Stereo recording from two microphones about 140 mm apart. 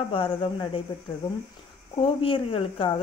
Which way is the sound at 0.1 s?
40° left (ahead or behind).